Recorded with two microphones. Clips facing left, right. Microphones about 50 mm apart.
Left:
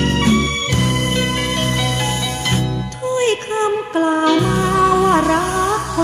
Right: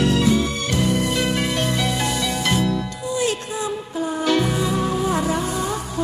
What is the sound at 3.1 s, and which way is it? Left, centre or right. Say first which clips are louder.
Music: left 6 dB; left.